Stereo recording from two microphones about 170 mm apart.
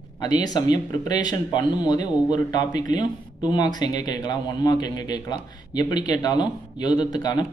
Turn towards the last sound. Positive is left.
turn(degrees=25)  # may be behind; listen again after turning